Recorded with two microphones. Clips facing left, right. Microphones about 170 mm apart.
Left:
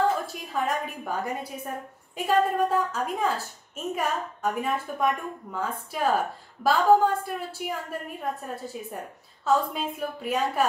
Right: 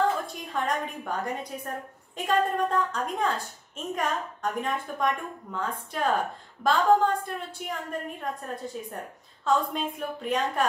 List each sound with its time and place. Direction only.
0.3 s a woman's voice: 5° left (ahead or behind)